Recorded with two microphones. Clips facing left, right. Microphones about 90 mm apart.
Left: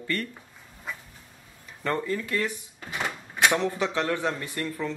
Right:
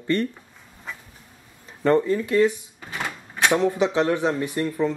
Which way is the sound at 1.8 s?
20° right (ahead or behind).